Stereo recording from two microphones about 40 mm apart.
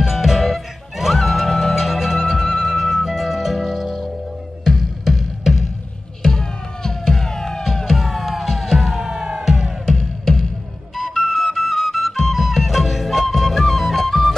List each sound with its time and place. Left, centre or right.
0.0 s music: centre
1.8 s music: centre
7.6 s music: centre
9.1 s music: centre
9.4 s music: centre
9.9 s music: centre